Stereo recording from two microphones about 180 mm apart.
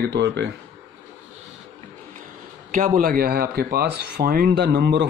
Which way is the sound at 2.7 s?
50° right (ahead or behind).